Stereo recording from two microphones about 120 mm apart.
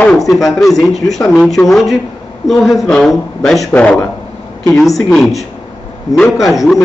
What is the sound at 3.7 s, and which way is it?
Speech, 15° left (ahead or behind).